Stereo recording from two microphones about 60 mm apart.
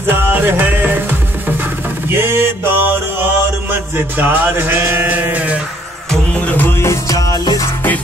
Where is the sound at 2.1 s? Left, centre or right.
Right.